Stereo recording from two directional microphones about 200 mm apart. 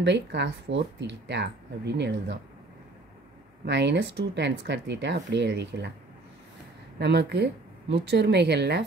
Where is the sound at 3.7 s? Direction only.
60° right (ahead or behind).